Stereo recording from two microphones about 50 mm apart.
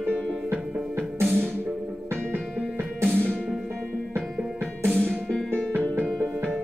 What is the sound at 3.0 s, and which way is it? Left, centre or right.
Music, right.